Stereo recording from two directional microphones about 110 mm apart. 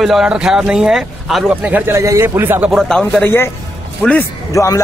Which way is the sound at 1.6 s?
15° right (ahead or behind).